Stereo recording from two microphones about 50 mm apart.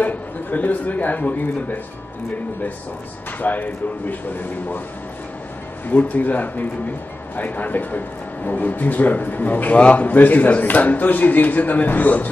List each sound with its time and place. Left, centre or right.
0.0 s speech: left
3.3 s speech: left
5.9 s speech: left
9.8 s a man's voice: left
10.0 s speech: left